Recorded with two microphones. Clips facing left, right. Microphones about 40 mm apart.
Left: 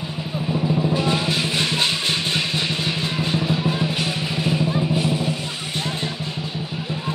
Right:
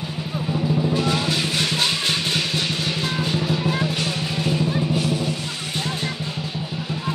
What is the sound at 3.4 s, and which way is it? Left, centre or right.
Drum, left.